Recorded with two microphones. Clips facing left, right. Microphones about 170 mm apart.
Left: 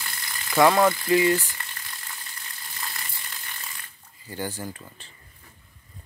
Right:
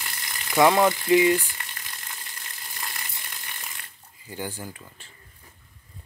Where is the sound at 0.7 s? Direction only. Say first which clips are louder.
Right 1 dB; 20° right (ahead or behind).